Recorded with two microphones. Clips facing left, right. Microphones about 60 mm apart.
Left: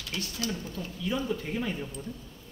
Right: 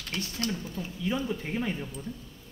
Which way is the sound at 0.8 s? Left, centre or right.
Centre.